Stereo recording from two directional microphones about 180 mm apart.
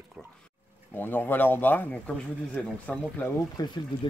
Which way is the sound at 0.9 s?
10° left (ahead or behind).